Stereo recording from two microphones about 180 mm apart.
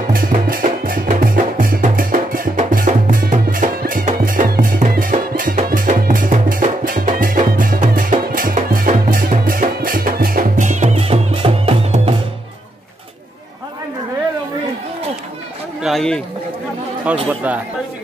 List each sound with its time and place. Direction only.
0.1 s music: 50° right (ahead or behind); by 12.2 s 30° right (ahead or behind)
15.8 s a sound: centre (ahead or behind)
17.3 s speech: 10° right (ahead or behind)